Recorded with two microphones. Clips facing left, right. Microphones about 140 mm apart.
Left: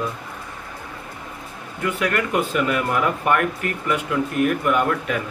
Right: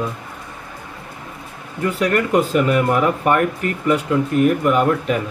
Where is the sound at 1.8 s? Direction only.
35° right (ahead or behind).